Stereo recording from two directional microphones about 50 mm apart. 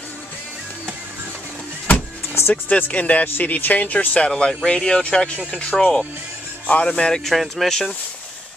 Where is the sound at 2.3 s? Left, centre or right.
Left.